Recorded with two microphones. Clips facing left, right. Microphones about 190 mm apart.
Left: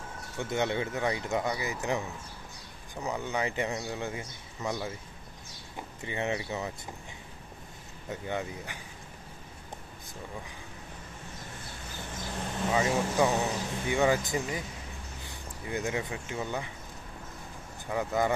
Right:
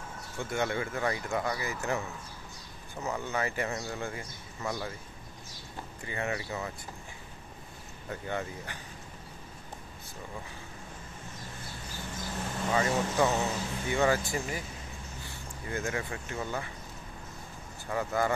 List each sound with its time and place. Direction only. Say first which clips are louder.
0.4 s speech: left 2 dB; 20° left (ahead or behind)
6.0 s speech: left 2 dB; 20° left (ahead or behind)
8.1 s speech: left 1 dB; 15° left (ahead or behind)
12.6 s speech: left 1 dB; 10° left (ahead or behind)
17.8 s speech: left 1 dB; 15° left (ahead or behind)